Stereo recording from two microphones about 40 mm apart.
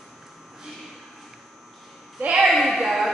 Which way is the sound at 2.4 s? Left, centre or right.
Centre.